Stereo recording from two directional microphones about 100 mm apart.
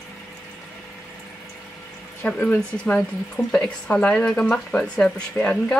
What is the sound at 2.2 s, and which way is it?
Speech, 15° left (ahead or behind).